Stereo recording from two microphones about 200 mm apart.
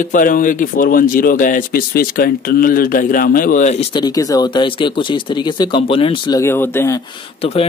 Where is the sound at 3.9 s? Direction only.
20° left (ahead or behind).